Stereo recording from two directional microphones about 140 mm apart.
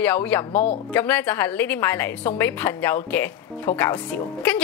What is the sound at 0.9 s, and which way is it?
A woman's voice, 15° left (ahead or behind).